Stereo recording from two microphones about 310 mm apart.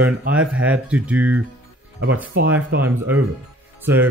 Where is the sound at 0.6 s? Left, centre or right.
Centre.